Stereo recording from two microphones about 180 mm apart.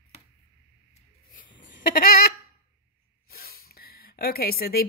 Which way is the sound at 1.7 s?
50° left (ahead or behind).